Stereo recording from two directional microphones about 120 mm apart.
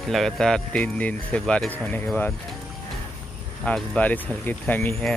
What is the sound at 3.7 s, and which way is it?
Speech, 10° left (ahead or behind).